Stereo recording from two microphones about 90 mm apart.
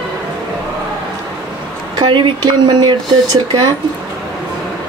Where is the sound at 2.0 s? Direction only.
65° right (ahead or behind).